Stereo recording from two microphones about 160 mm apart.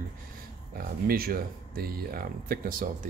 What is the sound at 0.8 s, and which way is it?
Speech, 70° right (ahead or behind).